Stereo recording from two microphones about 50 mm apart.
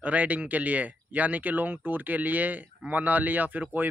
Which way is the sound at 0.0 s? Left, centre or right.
Right.